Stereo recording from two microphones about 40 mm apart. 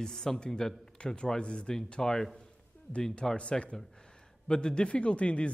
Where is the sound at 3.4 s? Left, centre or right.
Left.